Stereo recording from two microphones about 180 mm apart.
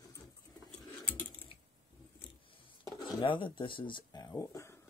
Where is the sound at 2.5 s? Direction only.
25° left (ahead or behind).